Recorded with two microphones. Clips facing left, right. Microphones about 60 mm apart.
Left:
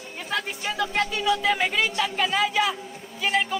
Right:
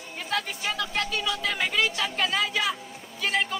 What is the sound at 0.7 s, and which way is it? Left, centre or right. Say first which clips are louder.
Speech: left 7 dB; left.